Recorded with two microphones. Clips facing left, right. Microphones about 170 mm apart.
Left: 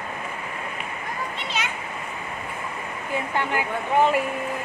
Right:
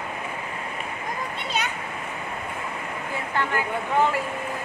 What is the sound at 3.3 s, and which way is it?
Speech, 15° left (ahead or behind).